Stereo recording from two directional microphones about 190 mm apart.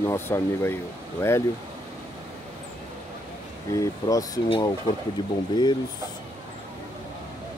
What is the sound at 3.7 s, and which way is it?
Speech, 20° left (ahead or behind).